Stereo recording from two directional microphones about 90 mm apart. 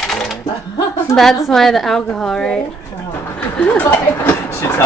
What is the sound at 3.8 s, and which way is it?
Speech, 25° left (ahead or behind).